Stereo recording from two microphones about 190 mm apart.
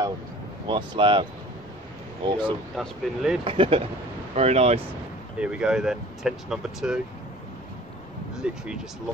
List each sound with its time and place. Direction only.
0.7 s speech: 25° right (ahead or behind)
2.2 s speech: 25° right (ahead or behind)
2.7 s speech: centre (ahead or behind)
3.4 s speech: 30° right (ahead or behind)
5.4 s speech: 5° right (ahead or behind)
8.4 s speech: 5° right (ahead or behind)